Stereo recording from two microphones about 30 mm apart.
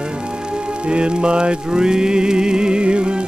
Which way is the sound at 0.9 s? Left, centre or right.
Right.